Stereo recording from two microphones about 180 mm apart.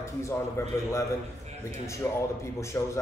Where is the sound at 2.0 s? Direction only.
15° left (ahead or behind).